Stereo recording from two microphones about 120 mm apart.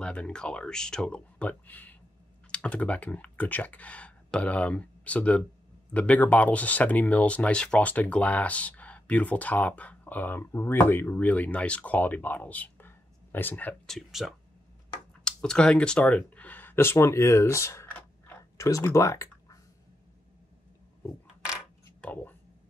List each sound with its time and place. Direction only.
0.0 s speech: 10° left (ahead or behind)
13.8 s speech: 5° left (ahead or behind); by 17.9 s 25° left (ahead or behind)
17.9 s a sound: 15° left (ahead or behind)
18.7 s speech: 25° left (ahead or behind)
22.0 s speech: 15° left (ahead or behind)